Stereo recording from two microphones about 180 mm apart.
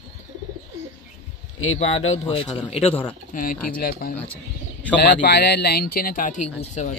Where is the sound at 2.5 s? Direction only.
35° left (ahead or behind).